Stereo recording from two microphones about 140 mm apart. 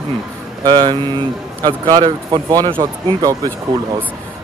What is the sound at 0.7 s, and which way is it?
Speech, 30° right (ahead or behind).